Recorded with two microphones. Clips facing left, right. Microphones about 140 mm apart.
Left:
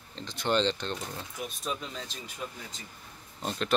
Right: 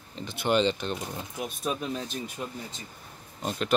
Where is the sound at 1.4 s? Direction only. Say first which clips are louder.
Right 5 dB; 55° right (ahead or behind).